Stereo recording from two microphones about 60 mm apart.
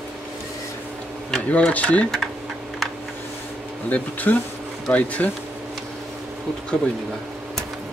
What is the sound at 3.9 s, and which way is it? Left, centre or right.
Speech, left.